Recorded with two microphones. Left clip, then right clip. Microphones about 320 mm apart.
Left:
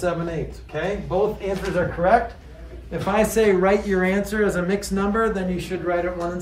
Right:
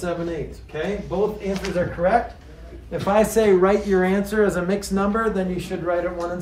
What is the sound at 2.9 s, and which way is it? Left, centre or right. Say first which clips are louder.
Speech: right 2 dB; centre.